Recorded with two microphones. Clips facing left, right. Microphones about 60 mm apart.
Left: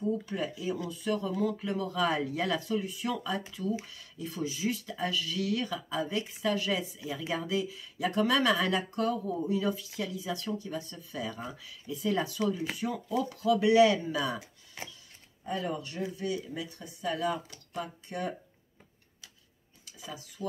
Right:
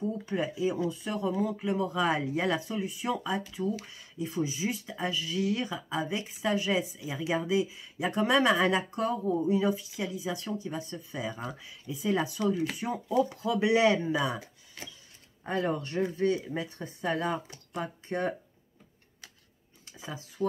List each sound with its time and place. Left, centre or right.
0.2 s speech: right
15.4 s speech: right
19.8 s speech: right